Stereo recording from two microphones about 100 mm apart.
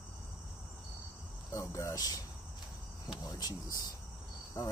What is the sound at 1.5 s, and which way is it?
Speech, 30° left (ahead or behind).